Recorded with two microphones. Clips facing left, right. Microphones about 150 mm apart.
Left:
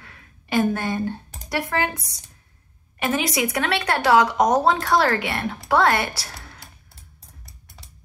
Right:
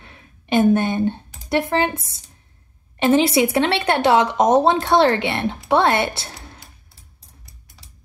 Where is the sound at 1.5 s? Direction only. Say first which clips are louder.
Right 5 dB; 25° right (ahead or behind).